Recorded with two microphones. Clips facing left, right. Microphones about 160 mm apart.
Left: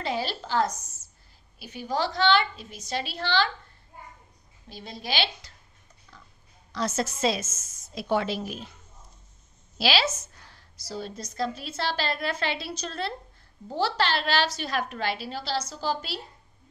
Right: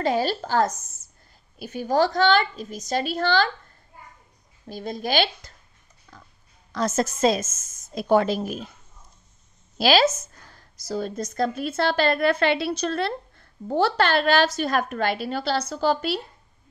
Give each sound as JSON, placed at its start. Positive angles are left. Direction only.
{"t": 0.0, "sound": "a woman's voice", "side_deg": -45}
{"t": 4.6, "sound": "a woman's voice", "side_deg": -50}
{"t": 6.1, "sound": "oink", "side_deg": -45}
{"t": 6.7, "sound": "a woman's voice", "side_deg": -45}
{"t": 9.8, "sound": "a woman's voice", "side_deg": -45}